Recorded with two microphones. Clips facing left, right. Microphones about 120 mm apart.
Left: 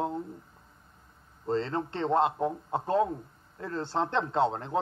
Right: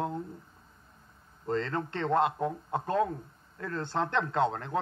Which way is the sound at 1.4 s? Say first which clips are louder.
Left 2 dB; 25° left (ahead or behind).